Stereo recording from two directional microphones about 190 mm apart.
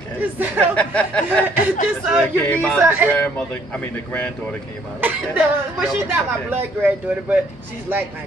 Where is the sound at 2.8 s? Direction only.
10° right (ahead or behind).